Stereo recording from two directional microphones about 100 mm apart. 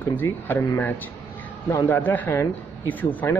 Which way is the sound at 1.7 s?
25° left (ahead or behind).